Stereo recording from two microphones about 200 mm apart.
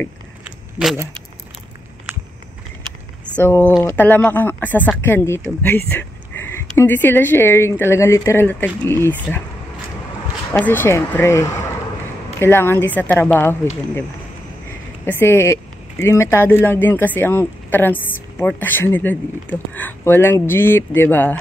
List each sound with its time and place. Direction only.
0.8 s speech: 5° right (ahead or behind)
2.1 s a sound: 5° right (ahead or behind)
3.4 s speech: 10° left (ahead or behind)
10.5 s speech: 10° left (ahead or behind)
15.0 s speech: 10° left (ahead or behind)